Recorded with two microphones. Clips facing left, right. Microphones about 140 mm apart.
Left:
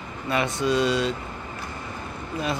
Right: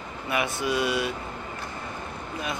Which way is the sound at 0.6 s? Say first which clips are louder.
Left 5 dB; 25° left (ahead or behind).